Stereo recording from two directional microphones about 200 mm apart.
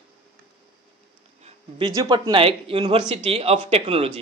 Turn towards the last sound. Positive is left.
turn(degrees=-30)  # may be behind; listen again after turning